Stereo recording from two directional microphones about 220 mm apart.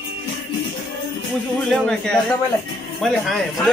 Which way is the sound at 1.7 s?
5° left (ahead or behind).